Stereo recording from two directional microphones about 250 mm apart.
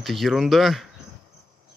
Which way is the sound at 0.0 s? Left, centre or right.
Centre.